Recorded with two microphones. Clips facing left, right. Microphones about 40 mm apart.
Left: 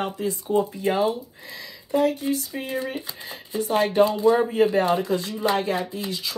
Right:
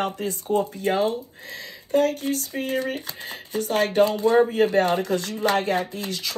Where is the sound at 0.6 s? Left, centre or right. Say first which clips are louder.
Left 1 dB; left.